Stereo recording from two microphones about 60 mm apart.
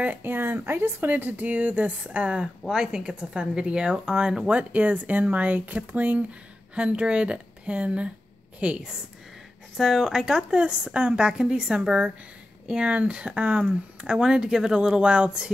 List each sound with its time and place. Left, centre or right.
0.0 s speech: right
2.4 s speech: centre
4.5 s speech: right
9.8 s speech: centre